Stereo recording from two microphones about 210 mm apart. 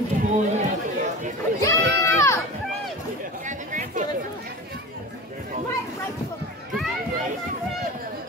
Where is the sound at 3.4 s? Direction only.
35° right (ahead or behind).